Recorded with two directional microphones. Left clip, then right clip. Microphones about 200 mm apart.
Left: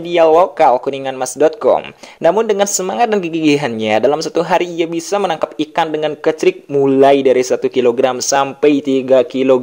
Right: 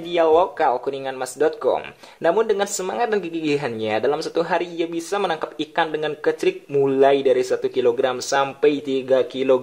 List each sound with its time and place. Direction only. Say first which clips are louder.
0.1 s speech: left 7 dB; 25° left (ahead or behind)